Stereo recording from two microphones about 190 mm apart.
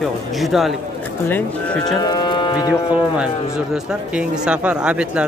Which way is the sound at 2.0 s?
25° left (ahead or behind).